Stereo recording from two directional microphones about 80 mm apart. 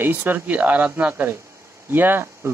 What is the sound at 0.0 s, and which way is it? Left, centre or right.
Speech, right.